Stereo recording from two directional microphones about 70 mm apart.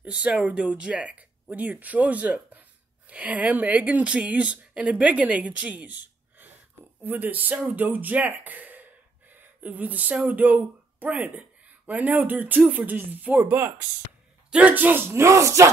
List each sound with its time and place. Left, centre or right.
0.0 s speech: centre; by 13.8 s right
14.5 s speech: right